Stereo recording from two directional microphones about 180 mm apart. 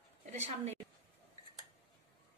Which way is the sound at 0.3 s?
35° right (ahead or behind).